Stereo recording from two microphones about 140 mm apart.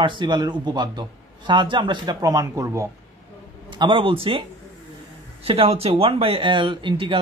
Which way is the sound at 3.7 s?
35° right (ahead or behind).